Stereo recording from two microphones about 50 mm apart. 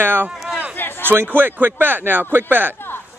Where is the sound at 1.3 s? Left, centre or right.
Right.